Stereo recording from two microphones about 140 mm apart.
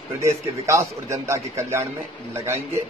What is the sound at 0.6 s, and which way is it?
A man's voice, 20° right (ahead or behind).